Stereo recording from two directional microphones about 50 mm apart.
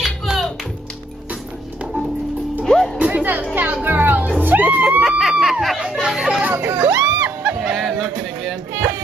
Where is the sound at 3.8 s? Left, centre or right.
Right.